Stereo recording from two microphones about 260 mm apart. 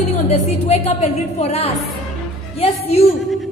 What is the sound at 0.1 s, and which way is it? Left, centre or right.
Speech, left.